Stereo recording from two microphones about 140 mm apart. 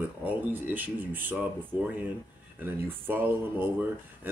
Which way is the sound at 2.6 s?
15° right (ahead or behind).